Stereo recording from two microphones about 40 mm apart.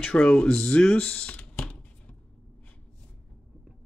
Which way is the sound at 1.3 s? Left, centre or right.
Left.